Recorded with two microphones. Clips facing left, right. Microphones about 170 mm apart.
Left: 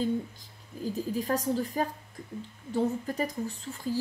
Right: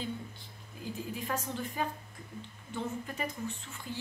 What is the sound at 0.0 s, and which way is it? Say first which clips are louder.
Speech: left 10 dB; 40° left (ahead or behind).